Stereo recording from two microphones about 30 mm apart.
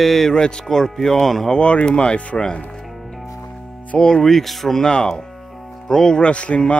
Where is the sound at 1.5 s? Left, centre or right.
Left.